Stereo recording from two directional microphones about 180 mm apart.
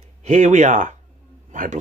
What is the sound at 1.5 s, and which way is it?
Speech, 45° right (ahead or behind).